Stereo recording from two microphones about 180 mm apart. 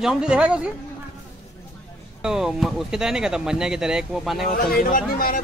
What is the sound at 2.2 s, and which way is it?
Speech, 5° right (ahead or behind).